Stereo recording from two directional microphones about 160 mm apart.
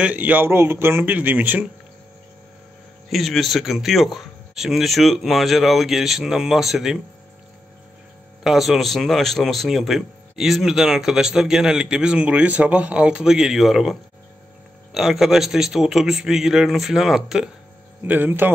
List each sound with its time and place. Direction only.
0.0 s a man's voice: 10° right (ahead or behind)
3.1 s speech: centre (ahead or behind)
8.5 s speech: centre (ahead or behind)
15.0 s a man's voice: centre (ahead or behind)